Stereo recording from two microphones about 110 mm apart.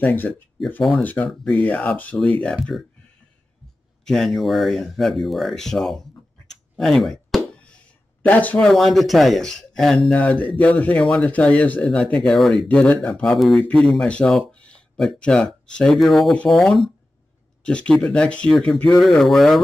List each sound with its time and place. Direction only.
0.0 s speech: 15° left (ahead or behind)
4.0 s speech: 5° left (ahead or behind)
6.4 s clicking: 5° left (ahead or behind)
8.2 s speech: 15° left (ahead or behind)
8.6 s speech: centre (ahead or behind)